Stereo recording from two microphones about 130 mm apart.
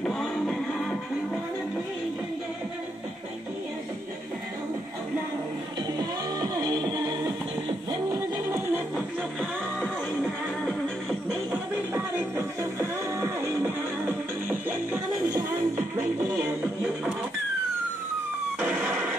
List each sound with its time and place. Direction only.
0.0 s music: 5° left (ahead or behind)
5.9 s music: 30° right (ahead or behind)
10.6 s music: 5° left (ahead or behind)
11.5 s music: 15° right (ahead or behind)
18.6 s music: 5° right (ahead or behind)